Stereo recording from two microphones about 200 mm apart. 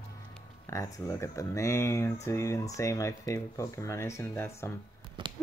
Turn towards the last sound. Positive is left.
turn(degrees=-25)  # may be behind; listen again after turning